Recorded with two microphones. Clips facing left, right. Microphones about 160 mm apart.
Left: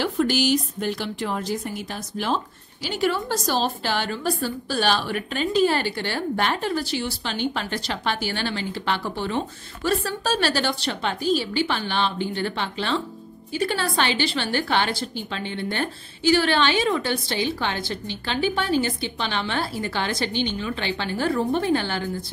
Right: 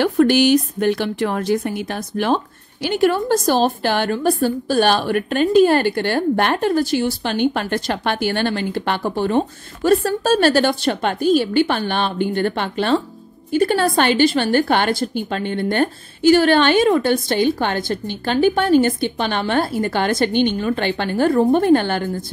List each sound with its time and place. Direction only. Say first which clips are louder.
0.0 s a woman's voice: right 8 dB; 60° right (ahead or behind)